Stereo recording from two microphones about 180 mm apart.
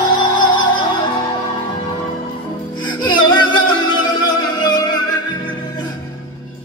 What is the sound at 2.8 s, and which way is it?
Music, 25° left (ahead or behind).